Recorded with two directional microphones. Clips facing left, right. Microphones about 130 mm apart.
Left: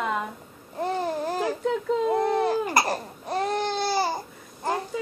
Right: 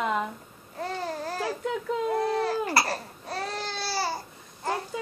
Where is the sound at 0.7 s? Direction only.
15° left (ahead or behind).